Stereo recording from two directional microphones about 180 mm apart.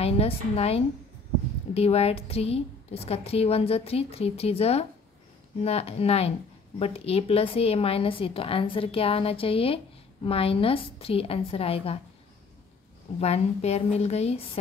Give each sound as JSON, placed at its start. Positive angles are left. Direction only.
{"t": 0.0, "sound": "a woman's voice", "side_deg": 35}
{"t": 13.2, "sound": "a woman's voice", "side_deg": 35}